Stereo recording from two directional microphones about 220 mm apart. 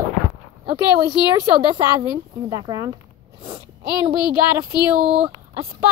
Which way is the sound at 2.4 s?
15° right (ahead or behind).